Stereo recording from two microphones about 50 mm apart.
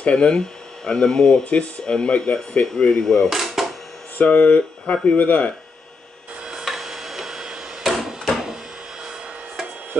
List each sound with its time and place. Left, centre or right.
0.0 s speech: left
3.0 s speech: centre
3.3 s a sound: centre
4.2 s speech: left
5.1 s speech: left
6.6 s printer: centre
8.3 s a sound: centre